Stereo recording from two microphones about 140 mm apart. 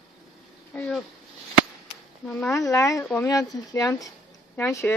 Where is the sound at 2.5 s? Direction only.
20° left (ahead or behind).